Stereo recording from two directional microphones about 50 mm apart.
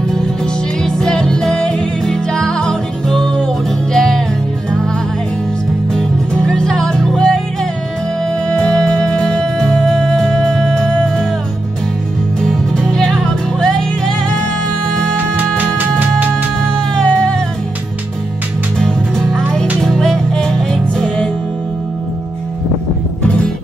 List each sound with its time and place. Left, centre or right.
0.8 s music: centre
5.9 s music: centre
8.5 s music: centre
12.4 s music: centre
15.1 s music: right
16.7 s music: centre
18.8 s music: centre